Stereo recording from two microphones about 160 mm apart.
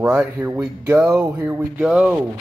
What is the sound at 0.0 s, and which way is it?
Speech, 10° right (ahead or behind).